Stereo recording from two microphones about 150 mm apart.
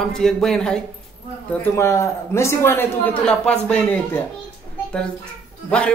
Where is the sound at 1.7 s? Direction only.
20° left (ahead or behind).